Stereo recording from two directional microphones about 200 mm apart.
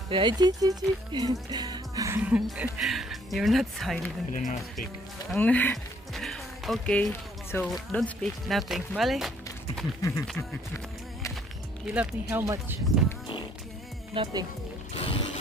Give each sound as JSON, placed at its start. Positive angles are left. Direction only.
{"t": 0.1, "sound": "speech", "side_deg": -25}
{"t": 4.3, "sound": "speech", "side_deg": 40}
{"t": 5.3, "sound": "speech", "side_deg": 5}
{"t": 10.0, "sound": "speech", "side_deg": 15}
{"t": 11.9, "sound": "speech", "side_deg": -10}
{"t": 14.1, "sound": "speech", "side_deg": -25}
{"t": 15.0, "sound": "mechanisms", "side_deg": 25}